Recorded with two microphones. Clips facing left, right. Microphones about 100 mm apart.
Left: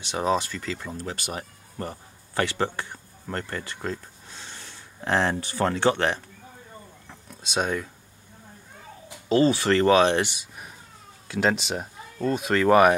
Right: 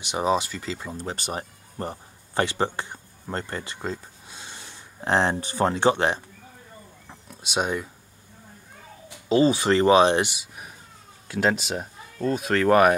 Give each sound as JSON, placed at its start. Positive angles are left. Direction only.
{"t": 0.0, "sound": "speech", "side_deg": -15}
{"t": 1.0, "sound": "speech", "side_deg": -30}
{"t": 7.1, "sound": "a sound", "side_deg": -10}
{"t": 9.3, "sound": "speech", "side_deg": -15}
{"t": 10.3, "sound": "speech", "side_deg": -5}